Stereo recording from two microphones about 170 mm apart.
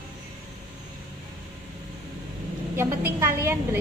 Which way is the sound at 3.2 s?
15° right (ahead or behind).